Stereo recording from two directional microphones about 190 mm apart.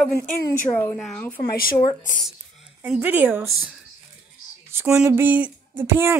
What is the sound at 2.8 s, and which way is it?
Speech, 10° right (ahead or behind).